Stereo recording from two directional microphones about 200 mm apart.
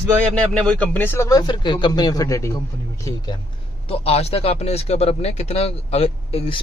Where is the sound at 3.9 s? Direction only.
30° left (ahead or behind).